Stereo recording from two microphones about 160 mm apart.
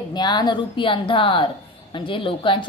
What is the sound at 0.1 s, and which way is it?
A woman's voice, 25° left (ahead or behind).